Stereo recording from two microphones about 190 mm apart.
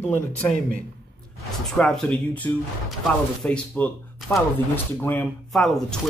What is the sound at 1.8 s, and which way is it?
Speech, 5° left (ahead or behind).